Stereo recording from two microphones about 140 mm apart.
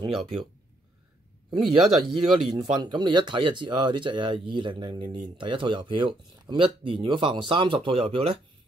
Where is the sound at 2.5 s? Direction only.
30° right (ahead or behind).